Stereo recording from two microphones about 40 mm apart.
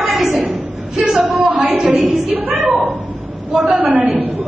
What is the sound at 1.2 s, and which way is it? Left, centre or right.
A woman's voice, right.